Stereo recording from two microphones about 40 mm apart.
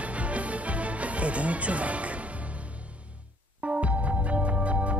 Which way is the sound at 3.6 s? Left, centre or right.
Right.